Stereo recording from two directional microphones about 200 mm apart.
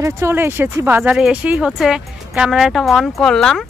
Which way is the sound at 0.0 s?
15° right (ahead or behind).